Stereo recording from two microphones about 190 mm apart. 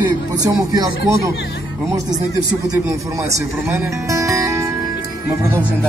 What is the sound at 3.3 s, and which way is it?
Speech, 15° right (ahead or behind).